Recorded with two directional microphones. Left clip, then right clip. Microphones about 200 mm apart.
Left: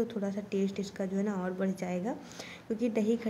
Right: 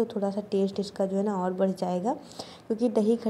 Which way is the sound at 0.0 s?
10° left (ahead or behind).